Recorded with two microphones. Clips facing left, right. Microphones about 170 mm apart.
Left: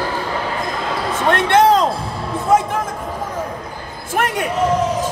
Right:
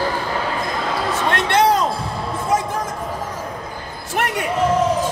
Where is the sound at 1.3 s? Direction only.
55° left (ahead or behind).